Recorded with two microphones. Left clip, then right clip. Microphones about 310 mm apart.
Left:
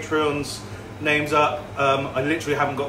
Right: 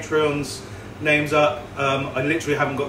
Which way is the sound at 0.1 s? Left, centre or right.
Centre.